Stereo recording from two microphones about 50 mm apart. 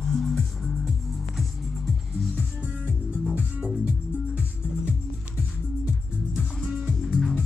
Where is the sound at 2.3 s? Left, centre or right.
Right.